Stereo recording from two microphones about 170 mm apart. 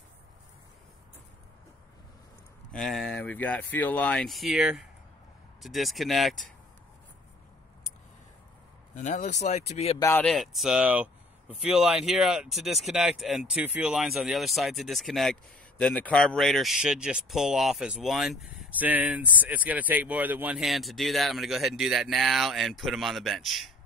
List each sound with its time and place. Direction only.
2.7 s speech: centre (ahead or behind)
8.9 s speech: 45° left (ahead or behind)
9.9 s speech: 15° left (ahead or behind)
10.2 s speech: centre (ahead or behind)